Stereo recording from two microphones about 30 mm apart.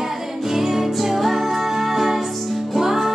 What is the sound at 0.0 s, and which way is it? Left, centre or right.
Music, centre.